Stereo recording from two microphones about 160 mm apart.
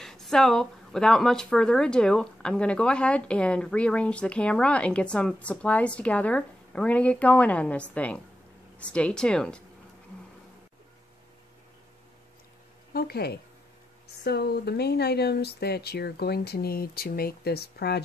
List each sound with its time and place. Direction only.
0.0 s speech: 5° left (ahead or behind)
12.9 s speech: 80° left